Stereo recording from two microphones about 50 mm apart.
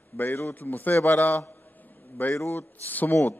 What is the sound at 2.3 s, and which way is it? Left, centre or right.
Speech, left.